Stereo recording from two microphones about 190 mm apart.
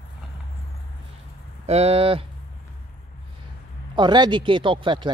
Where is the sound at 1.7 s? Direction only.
35° right (ahead or behind).